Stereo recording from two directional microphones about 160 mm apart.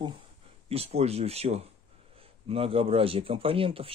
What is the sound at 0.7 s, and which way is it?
Speech, 40° right (ahead or behind).